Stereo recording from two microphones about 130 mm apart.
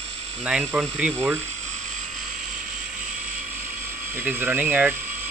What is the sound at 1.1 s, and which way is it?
Speech, 20° right (ahead or behind).